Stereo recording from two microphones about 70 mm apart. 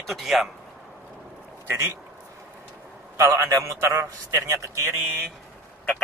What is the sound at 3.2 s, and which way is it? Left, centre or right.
Speech, right.